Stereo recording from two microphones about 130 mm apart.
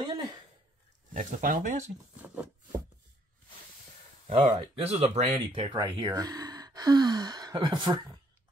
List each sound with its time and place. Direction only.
0.0 s a sound: 30° right (ahead or behind)
1.1 s speech: 90° right
4.3 s speech: 45° right (ahead or behind)
5.5 s speech: 40° right (ahead or behind)